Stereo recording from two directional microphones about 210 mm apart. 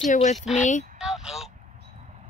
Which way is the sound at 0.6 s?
35° left (ahead or behind).